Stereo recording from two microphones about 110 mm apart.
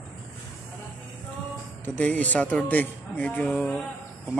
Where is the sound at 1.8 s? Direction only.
15° left (ahead or behind).